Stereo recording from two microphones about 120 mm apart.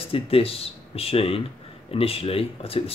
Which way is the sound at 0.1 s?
50° left (ahead or behind).